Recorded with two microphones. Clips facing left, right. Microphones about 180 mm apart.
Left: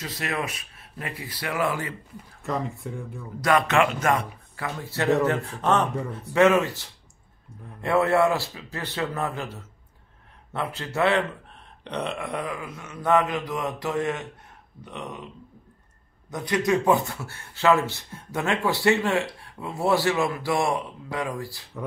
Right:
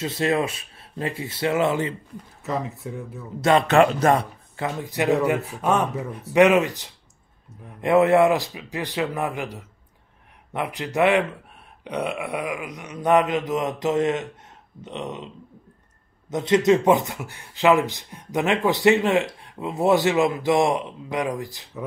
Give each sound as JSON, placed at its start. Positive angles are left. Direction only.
{"t": 0.0, "sound": "speech", "side_deg": -25}
{"t": 2.4, "sound": "speech", "side_deg": -5}
{"t": 3.3, "sound": "speech", "side_deg": -25}